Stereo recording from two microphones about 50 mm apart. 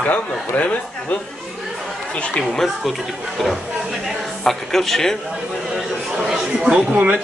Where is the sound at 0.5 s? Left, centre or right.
Left; by 5.2 s centre.